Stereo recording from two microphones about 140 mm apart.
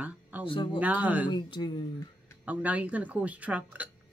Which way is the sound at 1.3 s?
35° left (ahead or behind).